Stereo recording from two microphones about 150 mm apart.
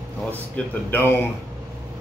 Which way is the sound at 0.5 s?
15° left (ahead or behind).